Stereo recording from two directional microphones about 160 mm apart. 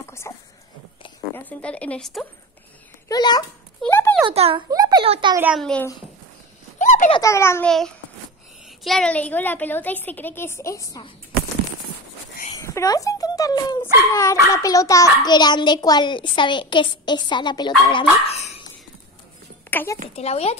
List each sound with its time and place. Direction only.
0.3 s a sound: 20° left (ahead or behind); by 2.2 s 5° left (ahead or behind)
3.1 s a child's voice: 25° left (ahead or behind)
3.8 s a sound: 10° left (ahead or behind)
4.3 s a child's voice: 35° right (ahead or behind)
4.6 s a child's voice: 25° right (ahead or behind)
5.0 s a child's voice: 35° right (ahead or behind)
5.5 s speech: 5° left (ahead or behind)
6.8 s a sound: 50° left (ahead or behind)
7.2 s a woman's voice: 15° left (ahead or behind)
8.6 s a woman's voice: centre (ahead or behind); by 11.1 s 20° left (ahead or behind)
12.5 s a child's voice: 20° left (ahead or behind); by 18.5 s 40° left (ahead or behind)
19.7 s a woman's voice: 10° left (ahead or behind)
20.2 s speech: 40° left (ahead or behind)